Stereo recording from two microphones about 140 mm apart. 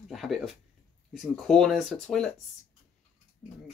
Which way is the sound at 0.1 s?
Centre (ahead or behind).